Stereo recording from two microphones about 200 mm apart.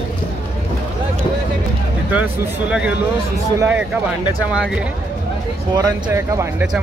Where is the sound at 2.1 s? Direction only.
10° right (ahead or behind).